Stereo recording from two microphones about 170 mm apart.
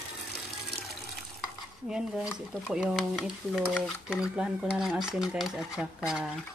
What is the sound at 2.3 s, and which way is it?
Speech, centre (ahead or behind).